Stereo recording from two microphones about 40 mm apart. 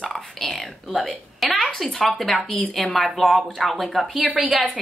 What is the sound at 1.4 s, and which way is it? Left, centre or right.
Speech, left.